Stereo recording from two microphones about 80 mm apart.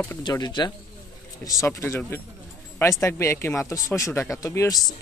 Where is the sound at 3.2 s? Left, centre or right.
Left.